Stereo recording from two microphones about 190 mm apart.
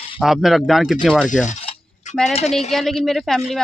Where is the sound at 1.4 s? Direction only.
40° left (ahead or behind).